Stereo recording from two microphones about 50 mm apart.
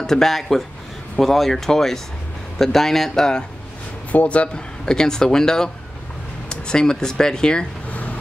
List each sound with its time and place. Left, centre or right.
0.0 s speech: centre
4.1 s speech: left
4.8 s speech: centre